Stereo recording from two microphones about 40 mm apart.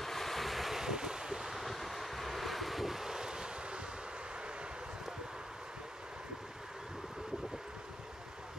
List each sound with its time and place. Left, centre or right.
0.0 s waves: centre
1.6 s vehicle: centre